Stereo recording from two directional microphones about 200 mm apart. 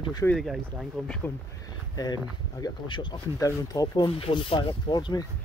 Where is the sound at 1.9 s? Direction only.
20° left (ahead or behind).